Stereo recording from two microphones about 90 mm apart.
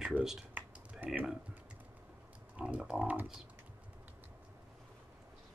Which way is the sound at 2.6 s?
15° right (ahead or behind).